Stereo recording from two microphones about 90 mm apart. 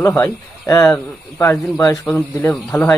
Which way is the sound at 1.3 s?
35° left (ahead or behind).